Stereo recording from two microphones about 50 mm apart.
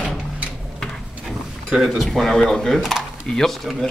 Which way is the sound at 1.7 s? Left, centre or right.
Centre.